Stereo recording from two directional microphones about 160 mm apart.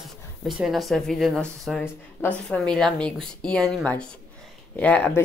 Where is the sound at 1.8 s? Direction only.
10° left (ahead or behind).